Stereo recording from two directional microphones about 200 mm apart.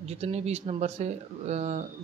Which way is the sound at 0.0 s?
30° right (ahead or behind).